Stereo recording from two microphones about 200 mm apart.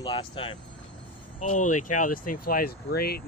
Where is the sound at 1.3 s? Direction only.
40° left (ahead or behind).